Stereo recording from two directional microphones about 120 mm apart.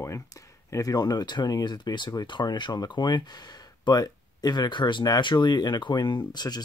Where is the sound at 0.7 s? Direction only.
30° left (ahead or behind).